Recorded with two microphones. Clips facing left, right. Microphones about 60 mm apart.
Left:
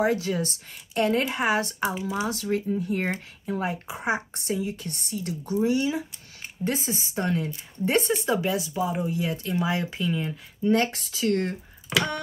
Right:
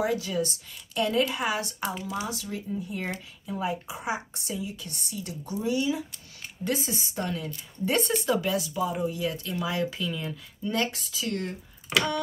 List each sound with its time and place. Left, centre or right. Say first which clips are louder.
0.0 s speech: left 3 dB; left
2.0 s speech: left 4 dB; centre
2.2 s speech: left 7 dB; left
3.0 s speech: left 5 dB; left
6.6 s speech: left 1 dB; left
10.9 s speech: left 7 dB; left